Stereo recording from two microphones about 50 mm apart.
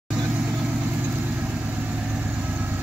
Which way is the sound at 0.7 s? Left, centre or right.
Right.